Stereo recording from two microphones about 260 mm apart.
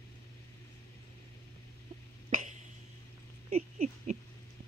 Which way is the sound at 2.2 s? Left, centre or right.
Right.